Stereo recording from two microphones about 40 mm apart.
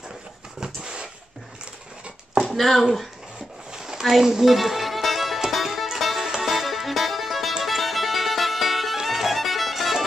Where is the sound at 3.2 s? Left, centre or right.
Centre.